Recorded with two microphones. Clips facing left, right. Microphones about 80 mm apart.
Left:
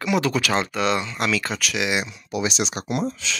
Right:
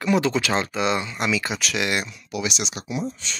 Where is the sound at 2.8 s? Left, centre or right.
Left.